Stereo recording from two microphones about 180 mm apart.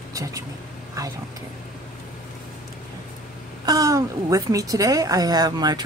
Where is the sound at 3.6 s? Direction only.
20° right (ahead or behind).